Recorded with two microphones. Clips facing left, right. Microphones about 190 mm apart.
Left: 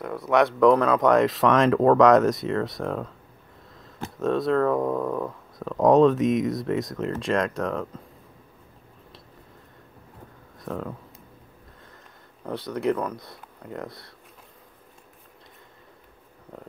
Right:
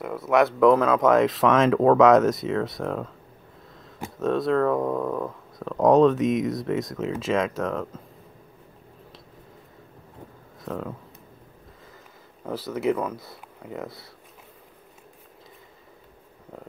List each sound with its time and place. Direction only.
0.0 s speech: centre (ahead or behind)
4.2 s speech: centre (ahead or behind)
10.6 s speech: centre (ahead or behind)
12.4 s speech: 5° right (ahead or behind)